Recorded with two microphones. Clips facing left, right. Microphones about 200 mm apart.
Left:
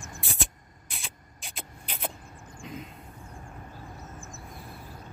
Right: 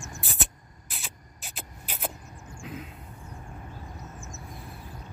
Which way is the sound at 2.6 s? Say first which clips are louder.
Right 1 dB; centre (ahead or behind).